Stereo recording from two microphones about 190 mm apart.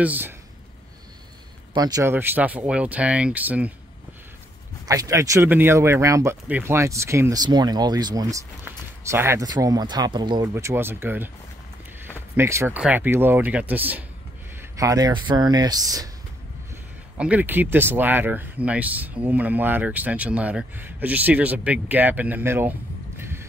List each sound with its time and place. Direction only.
0.0 s speech: 10° right (ahead or behind)
1.7 s speech: 20° right (ahead or behind)
4.8 s speech: 20° right (ahead or behind)
10.5 s speech: 15° right (ahead or behind)
12.4 s speech: 15° right (ahead or behind)
17.2 s speech: 10° right (ahead or behind)